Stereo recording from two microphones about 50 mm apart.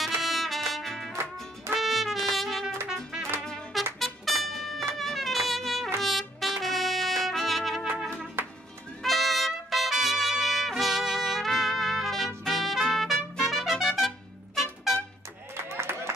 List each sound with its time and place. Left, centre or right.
0.0 s trumpet: centre
4.0 s music: centre
5.9 s trumpet: centre
8.4 s music: right
9.0 s trumpet: centre
15.5 s clapping: right